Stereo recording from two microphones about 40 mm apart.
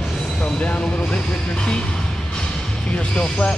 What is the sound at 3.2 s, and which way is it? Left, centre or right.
Speech, left.